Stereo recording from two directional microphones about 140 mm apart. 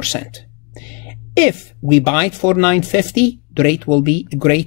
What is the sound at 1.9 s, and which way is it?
Speech, 25° left (ahead or behind).